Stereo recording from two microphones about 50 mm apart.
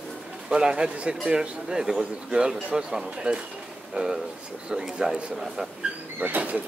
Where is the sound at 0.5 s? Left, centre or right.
Centre.